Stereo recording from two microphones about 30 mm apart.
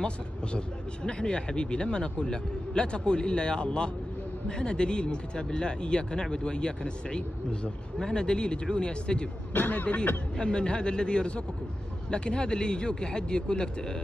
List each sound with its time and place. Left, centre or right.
1.0 s speech: left
9.5 s speech: left
10.3 s speech: left